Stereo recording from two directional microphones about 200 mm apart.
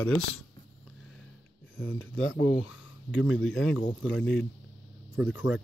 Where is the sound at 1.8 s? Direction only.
75° left (ahead or behind).